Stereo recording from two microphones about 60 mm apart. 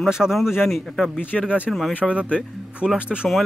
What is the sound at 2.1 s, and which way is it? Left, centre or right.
Speech, centre.